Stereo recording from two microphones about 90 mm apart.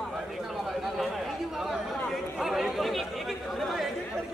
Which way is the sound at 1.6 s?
Centre (ahead or behind).